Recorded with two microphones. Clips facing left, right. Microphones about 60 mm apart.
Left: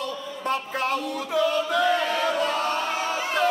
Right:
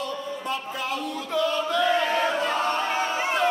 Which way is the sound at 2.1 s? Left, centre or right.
Right.